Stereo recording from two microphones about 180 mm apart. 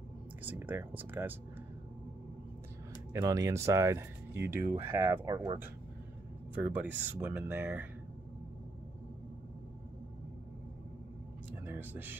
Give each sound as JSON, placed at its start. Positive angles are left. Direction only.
{"t": 0.4, "sound": "speech", "side_deg": -10}
{"t": 3.1, "sound": "speech", "side_deg": -15}
{"t": 6.5, "sound": "speech", "side_deg": -10}
{"t": 11.6, "sound": "speech", "side_deg": -10}